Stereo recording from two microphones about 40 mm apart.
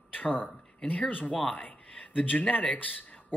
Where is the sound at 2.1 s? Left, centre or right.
Left.